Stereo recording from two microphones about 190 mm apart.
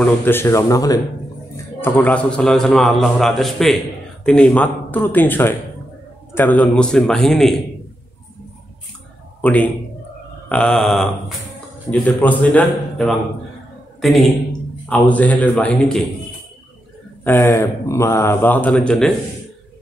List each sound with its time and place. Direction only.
0.0 s a man's voice: 10° left (ahead or behind)
9.4 s a man's voice: 10° left (ahead or behind)
17.2 s speech: 10° left (ahead or behind)